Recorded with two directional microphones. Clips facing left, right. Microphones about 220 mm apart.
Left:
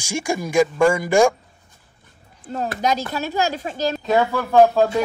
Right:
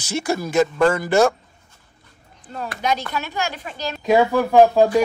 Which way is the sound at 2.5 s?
40° left (ahead or behind).